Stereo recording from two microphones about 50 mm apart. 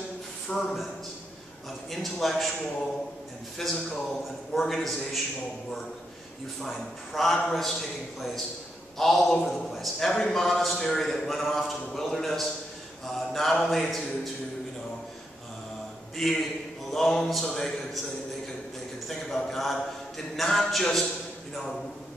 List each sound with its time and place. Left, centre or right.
0.5 s a man's voice: left
1.9 s a man's voice: centre
6.6 s a man's voice: centre
8.9 s a man's voice: centre
13.0 s mantra: centre
16.2 s a man's voice: centre
16.9 s a sound: centre
17.6 s a man's voice: centre
19.0 s mantra: centre